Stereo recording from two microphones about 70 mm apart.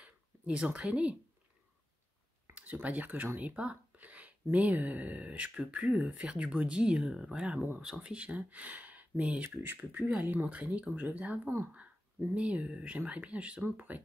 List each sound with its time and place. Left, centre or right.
0.0 s a sound: centre
2.5 s speech: right
9.9 s speech: centre
10.2 s speech: right